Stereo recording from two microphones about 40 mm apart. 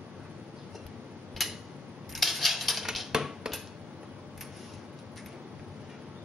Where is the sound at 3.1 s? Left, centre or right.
Centre.